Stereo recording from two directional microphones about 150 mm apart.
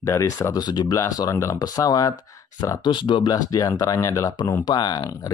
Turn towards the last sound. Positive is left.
turn(degrees=25)  # may be behind; listen again after turning